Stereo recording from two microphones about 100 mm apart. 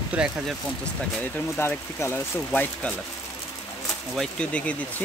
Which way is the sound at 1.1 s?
20° left (ahead or behind).